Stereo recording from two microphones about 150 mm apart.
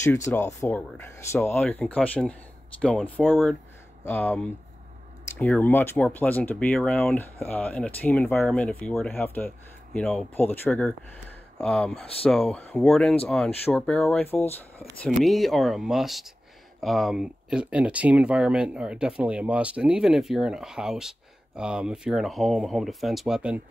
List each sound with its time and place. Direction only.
0.0 s speech: 20° left (ahead or behind); by 3.3 s centre (ahead or behind)
4.0 s speech: 10° left (ahead or behind)
15.2 s speech: centre (ahead or behind)